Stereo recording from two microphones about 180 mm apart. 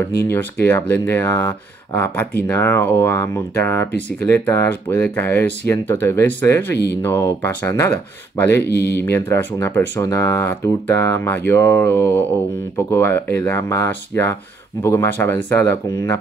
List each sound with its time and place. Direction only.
0.2 s speech: 10° left (ahead or behind)
8.6 s speech: 65° left (ahead or behind)
9.0 s speech: 10° left (ahead or behind)